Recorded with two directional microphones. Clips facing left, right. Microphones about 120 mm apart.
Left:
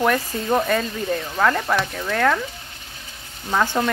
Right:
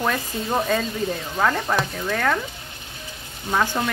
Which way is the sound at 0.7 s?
5° right (ahead or behind).